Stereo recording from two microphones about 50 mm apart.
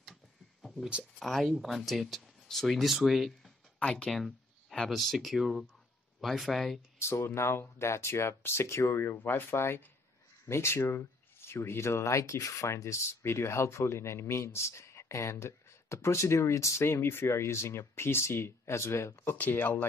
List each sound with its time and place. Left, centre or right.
0.1 s a sound: centre
1.2 s speech: centre
3.9 s speech: centre
7.0 s speech: left
9.5 s speech: left
19.3 s speech: left